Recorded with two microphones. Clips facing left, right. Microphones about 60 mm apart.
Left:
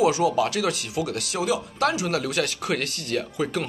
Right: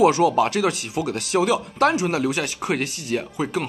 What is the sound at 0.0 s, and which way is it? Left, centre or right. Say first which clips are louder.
Speech: right 4 dB; right.